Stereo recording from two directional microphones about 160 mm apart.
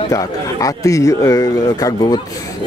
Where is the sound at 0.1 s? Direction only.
20° left (ahead or behind).